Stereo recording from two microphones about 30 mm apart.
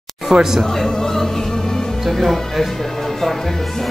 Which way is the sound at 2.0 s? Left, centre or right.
Centre.